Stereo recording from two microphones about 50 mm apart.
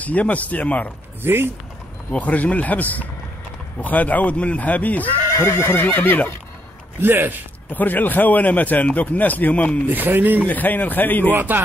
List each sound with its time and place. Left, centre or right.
0.0 s speech: left
1.2 s speech: right
2.0 s speech: left
5.3 s neigh: left
5.8 s speech: left
7.0 s speech: right
7.7 s speech: left
9.8 s speech: right
10.4 s speech: left
11.2 s speech: right